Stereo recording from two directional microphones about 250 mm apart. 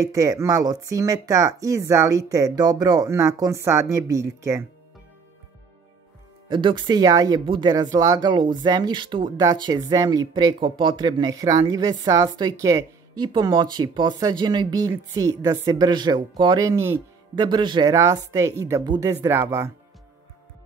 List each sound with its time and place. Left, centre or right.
0.0 s speech: centre
6.5 s speech: centre